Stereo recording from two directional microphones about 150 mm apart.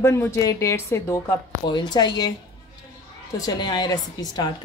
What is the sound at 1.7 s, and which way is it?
Speech, 30° left (ahead or behind).